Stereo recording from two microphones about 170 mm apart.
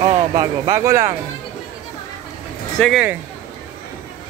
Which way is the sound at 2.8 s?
Centre (ahead or behind).